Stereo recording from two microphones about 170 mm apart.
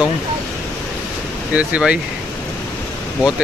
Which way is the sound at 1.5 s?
5° right (ahead or behind).